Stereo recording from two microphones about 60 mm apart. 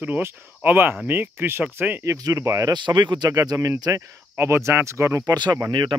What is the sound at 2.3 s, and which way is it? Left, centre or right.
Speech, right.